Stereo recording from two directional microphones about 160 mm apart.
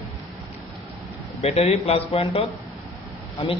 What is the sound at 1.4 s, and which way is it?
Speech, 40° left (ahead or behind).